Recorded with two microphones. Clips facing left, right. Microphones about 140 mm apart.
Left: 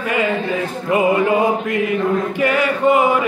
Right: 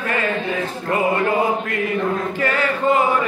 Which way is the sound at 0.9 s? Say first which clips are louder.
Left 4 dB; 20° left (ahead or behind).